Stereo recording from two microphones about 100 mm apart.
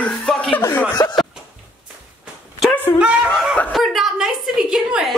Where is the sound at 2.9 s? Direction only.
30° left (ahead or behind).